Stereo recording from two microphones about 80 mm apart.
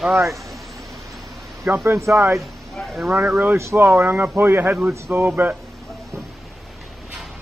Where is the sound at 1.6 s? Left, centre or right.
Right.